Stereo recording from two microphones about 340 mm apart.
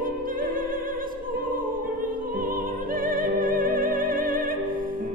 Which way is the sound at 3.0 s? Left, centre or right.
Right.